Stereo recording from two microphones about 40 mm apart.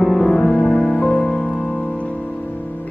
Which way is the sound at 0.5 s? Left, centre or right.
Left.